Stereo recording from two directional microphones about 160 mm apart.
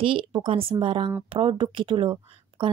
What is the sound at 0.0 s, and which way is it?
Speech, 30° right (ahead or behind).